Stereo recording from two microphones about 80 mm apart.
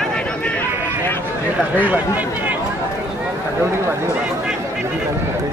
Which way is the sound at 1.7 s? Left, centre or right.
Right.